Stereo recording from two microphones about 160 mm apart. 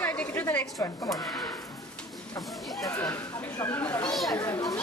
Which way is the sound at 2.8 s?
20° left (ahead or behind).